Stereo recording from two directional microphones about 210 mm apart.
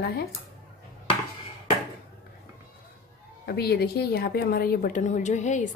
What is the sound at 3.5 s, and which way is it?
A woman's voice, 50° left (ahead or behind).